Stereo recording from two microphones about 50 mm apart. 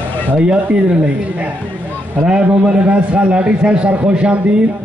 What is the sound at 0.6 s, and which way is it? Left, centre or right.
Speech, right.